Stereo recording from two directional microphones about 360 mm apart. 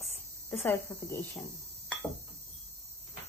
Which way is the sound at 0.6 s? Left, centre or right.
Centre.